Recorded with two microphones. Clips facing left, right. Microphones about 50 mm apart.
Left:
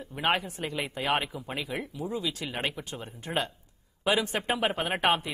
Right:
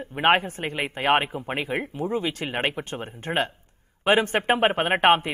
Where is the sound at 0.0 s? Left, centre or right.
Right.